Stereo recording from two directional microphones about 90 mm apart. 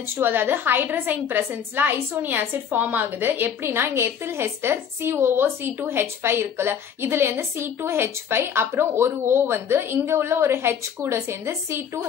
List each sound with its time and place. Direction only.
0.1 s a woman's voice: 25° right (ahead or behind)